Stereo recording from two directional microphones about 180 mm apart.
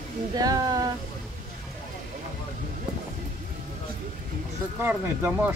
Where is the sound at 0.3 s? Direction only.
20° right (ahead or behind).